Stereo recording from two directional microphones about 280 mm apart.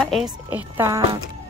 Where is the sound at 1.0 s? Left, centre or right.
Centre.